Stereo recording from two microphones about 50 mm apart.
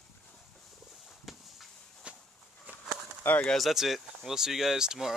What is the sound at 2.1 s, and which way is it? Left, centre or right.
Walk, right.